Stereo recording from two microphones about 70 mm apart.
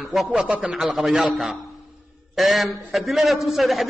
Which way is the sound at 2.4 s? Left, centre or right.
Centre.